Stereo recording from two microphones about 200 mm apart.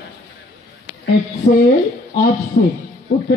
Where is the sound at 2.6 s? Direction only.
50° left (ahead or behind).